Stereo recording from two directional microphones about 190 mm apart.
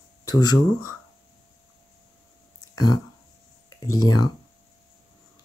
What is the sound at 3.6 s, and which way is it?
Speech, 15° left (ahead or behind).